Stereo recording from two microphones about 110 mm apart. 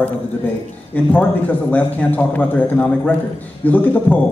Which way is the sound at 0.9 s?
15° left (ahead or behind).